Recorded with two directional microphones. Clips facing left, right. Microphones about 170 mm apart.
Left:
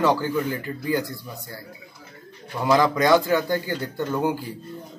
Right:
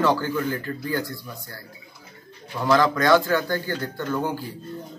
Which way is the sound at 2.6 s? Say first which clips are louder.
Left 1 dB; 15° left (ahead or behind).